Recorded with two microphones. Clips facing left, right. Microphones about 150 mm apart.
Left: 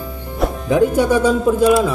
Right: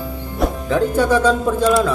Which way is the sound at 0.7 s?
15° left (ahead or behind).